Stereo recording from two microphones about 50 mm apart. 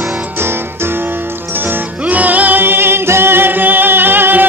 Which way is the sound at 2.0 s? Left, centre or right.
Right.